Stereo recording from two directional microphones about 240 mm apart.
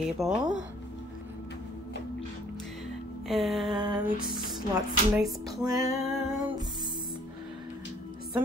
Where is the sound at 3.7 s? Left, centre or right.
Centre.